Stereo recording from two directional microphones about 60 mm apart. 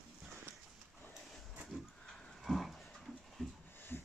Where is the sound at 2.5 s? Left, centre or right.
Centre.